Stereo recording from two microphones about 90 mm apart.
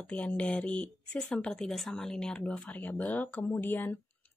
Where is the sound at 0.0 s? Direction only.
15° left (ahead or behind).